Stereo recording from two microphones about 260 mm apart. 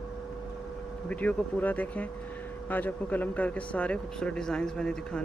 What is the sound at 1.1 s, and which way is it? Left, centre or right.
Speech, centre.